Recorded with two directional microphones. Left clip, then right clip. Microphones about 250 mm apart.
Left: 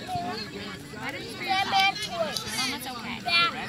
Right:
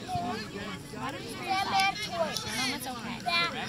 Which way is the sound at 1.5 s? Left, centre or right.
Left.